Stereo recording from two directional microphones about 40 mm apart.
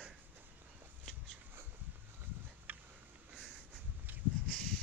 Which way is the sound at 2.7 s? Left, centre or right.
Right.